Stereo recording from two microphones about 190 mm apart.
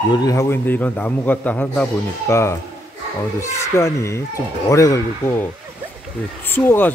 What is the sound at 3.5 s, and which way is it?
A man's voice, 15° left (ahead or behind).